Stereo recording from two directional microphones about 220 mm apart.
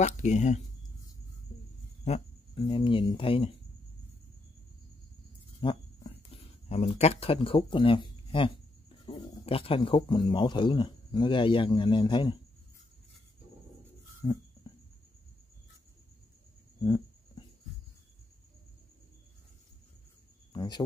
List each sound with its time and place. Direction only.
0.0 s speech: 30° left (ahead or behind)
2.0 s speech: 25° left (ahead or behind)
5.6 s speech: 20° left (ahead or behind)
14.2 s a sound: 20° left (ahead or behind)
16.8 s a sound: 20° left (ahead or behind)
20.5 s speech: 20° left (ahead or behind)